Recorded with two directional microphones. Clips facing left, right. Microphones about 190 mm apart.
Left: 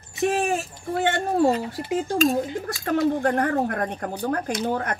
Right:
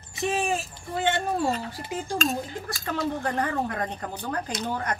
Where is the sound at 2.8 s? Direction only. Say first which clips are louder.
Left 7 dB; 60° left (ahead or behind).